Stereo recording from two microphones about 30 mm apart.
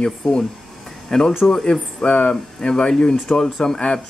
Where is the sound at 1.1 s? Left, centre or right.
Left.